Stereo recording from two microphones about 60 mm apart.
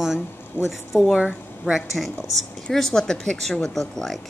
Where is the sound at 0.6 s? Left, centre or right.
Left.